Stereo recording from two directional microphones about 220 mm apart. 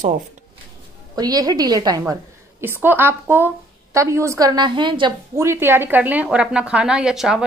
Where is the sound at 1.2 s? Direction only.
15° right (ahead or behind).